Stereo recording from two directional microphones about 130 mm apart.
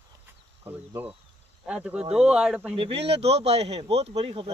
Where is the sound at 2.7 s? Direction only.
45° right (ahead or behind).